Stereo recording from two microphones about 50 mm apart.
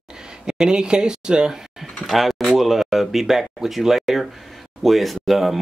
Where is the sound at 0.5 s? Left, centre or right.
Centre.